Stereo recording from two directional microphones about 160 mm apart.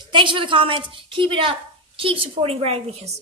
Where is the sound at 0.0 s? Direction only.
30° right (ahead or behind).